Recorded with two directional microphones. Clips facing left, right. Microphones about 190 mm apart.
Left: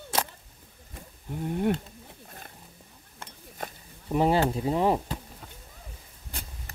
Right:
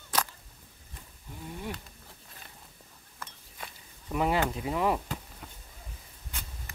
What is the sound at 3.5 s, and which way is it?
Speech, 40° left (ahead or behind).